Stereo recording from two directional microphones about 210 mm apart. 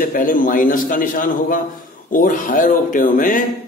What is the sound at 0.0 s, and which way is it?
A man's voice, 40° left (ahead or behind).